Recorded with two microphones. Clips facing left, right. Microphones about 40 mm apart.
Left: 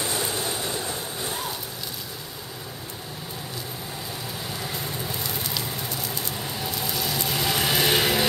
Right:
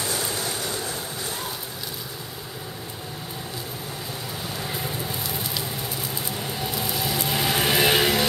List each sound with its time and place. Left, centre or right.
0.0 s a sound: centre
4.6 s fire: centre
6.3 s vehicle: centre